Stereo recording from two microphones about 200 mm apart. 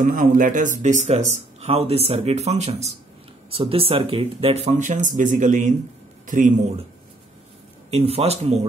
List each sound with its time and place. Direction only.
0.0 s speech: 45° right (ahead or behind)
7.9 s speech: 30° right (ahead or behind)